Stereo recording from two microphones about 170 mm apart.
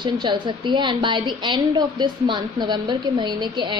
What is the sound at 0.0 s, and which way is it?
A woman's voice, 25° right (ahead or behind).